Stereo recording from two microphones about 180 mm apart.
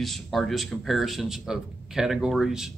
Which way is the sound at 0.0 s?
Centre (ahead or behind).